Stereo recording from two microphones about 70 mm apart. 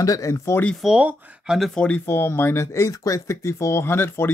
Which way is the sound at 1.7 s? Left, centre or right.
Centre.